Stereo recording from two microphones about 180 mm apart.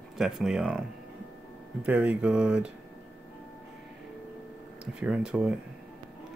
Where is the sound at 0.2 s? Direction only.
Centre (ahead or behind).